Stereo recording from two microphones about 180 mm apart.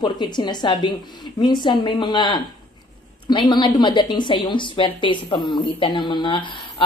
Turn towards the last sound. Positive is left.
turn(degrees=25)  # may be behind; listen again after turning